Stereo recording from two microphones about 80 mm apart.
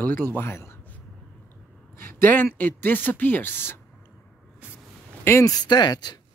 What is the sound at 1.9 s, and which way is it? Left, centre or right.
A man's voice, left.